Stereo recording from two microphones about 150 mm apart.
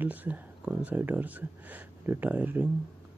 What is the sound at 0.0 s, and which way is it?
Speech, 10° right (ahead or behind).